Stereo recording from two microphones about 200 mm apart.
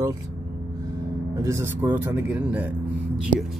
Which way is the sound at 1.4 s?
15° right (ahead or behind).